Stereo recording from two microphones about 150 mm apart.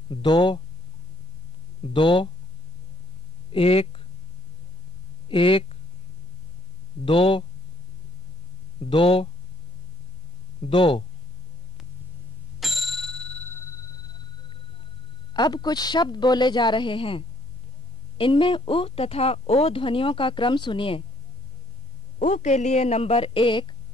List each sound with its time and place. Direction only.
0.1 s speech: 30° left (ahead or behind)
1.8 s speech: 35° left (ahead or behind)
3.5 s speech: 40° left (ahead or behind)
5.3 s speech: 35° left (ahead or behind)
7.1 s speech: 35° left (ahead or behind)
8.7 s speech: 35° left (ahead or behind)
10.6 s speech: 35° left (ahead or behind)
12.5 s a sound: centre (ahead or behind); by 13.9 s 20° left (ahead or behind)
15.3 s a woman's voice: 30° left (ahead or behind)
22.2 s a woman's voice: 50° left (ahead or behind); by 23.7 s 35° left (ahead or behind)